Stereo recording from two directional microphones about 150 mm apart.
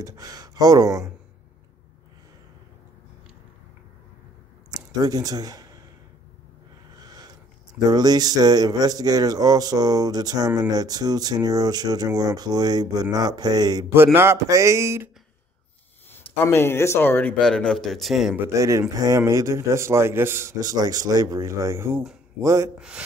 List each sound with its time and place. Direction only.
0.0 s speech: 25° right (ahead or behind)
4.6 s speech: 25° right (ahead or behind)
7.0 s a sound: 25° right (ahead or behind)
7.9 s speech: 25° right (ahead or behind)
13.9 s speech: 15° right (ahead or behind)
16.1 s speech: 15° left (ahead or behind); by 18.4 s centre (ahead or behind)
18.4 s speech: 20° right (ahead or behind)
22.8 s speech: 5° right (ahead or behind)